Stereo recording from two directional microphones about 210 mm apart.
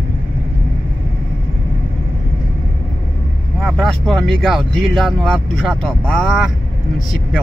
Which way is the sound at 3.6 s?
Centre (ahead or behind).